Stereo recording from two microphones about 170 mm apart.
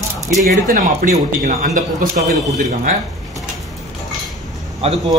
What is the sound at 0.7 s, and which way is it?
Speech, 50° right (ahead or behind).